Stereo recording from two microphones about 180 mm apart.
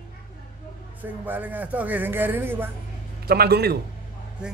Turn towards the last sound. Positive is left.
turn(degrees=-60)  # may be behind; listen again after turning